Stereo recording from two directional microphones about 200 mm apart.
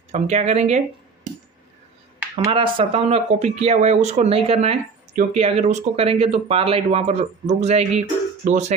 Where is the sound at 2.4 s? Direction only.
25° right (ahead or behind).